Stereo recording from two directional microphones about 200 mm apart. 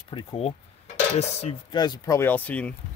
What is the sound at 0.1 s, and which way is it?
Speech, 25° left (ahead or behind).